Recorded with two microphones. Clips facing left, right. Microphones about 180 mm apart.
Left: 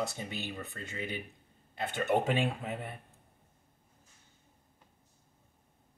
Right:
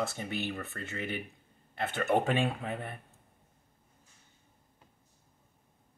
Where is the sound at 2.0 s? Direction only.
20° left (ahead or behind).